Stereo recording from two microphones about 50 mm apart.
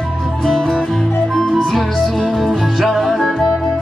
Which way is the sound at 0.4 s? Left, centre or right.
Centre.